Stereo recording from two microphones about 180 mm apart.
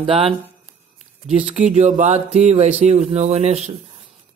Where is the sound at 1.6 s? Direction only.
40° right (ahead or behind).